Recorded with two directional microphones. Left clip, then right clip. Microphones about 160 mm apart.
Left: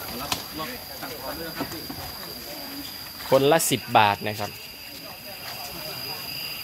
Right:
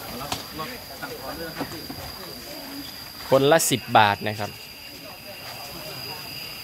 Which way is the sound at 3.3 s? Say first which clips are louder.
Right 1 dB; 15° right (ahead or behind).